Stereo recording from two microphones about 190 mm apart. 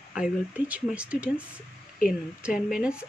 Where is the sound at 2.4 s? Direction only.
5° right (ahead or behind).